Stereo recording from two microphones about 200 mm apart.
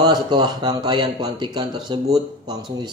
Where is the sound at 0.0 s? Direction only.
20° right (ahead or behind).